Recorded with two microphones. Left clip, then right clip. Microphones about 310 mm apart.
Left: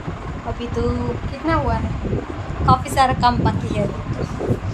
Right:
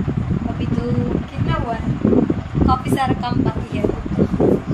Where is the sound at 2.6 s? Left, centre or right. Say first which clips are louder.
Left 4 dB; centre.